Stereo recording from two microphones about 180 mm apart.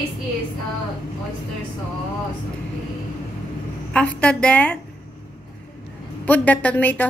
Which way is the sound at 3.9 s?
5° left (ahead or behind).